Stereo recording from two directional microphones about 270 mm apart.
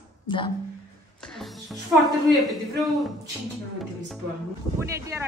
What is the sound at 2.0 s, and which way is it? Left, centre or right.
A woman's voice, centre.